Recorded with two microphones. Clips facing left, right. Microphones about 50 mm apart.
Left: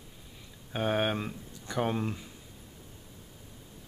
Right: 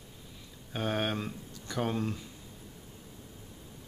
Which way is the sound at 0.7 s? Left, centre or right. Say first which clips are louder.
Left 3 dB; centre.